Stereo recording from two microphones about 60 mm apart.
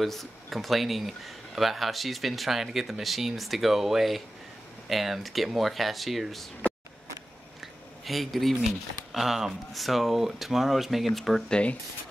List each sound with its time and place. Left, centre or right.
0.0 s speech: centre
7.6 s a sound: centre
9.1 s speech: centre
11.4 s speech: centre